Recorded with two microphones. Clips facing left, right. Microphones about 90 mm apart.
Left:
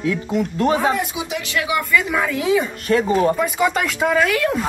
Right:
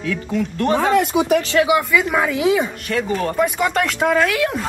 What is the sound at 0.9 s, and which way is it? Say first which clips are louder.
Speech: right 9 dB; 50° right (ahead or behind).